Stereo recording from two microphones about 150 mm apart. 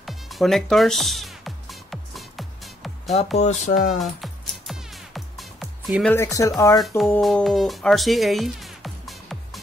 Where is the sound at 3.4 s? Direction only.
50° left (ahead or behind).